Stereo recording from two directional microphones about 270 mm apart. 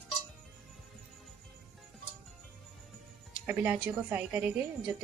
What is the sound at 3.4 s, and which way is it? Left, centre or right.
A woman's voice, centre.